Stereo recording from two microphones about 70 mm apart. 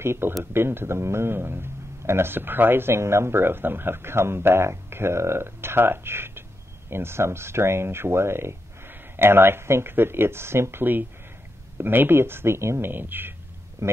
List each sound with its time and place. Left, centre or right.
0.0 s a man's voice: right
13.8 s speech: right